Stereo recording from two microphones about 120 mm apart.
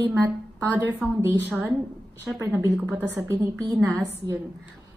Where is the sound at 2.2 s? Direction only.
30° right (ahead or behind).